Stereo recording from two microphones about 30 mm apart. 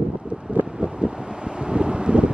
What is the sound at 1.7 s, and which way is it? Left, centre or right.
Wind noise, right.